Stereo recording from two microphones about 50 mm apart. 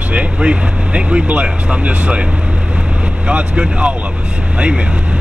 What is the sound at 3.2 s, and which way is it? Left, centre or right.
Speech, right.